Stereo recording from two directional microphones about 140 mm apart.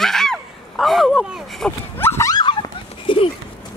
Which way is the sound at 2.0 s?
20° left (ahead or behind).